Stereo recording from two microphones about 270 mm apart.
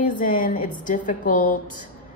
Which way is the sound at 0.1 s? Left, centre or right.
Left.